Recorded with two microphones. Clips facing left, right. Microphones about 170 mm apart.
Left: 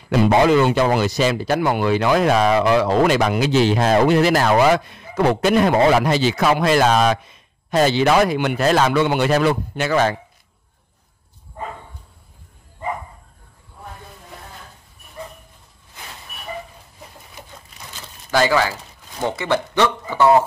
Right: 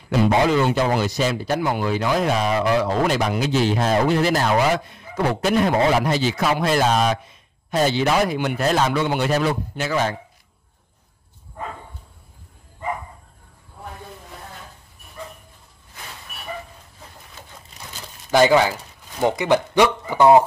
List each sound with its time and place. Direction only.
0.1 s speech: 75° left (ahead or behind)
17.4 s a sound: 15° left (ahead or behind)
18.3 s speech: 20° right (ahead or behind)